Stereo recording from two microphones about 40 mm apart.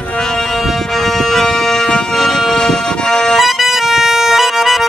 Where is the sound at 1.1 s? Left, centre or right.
Centre.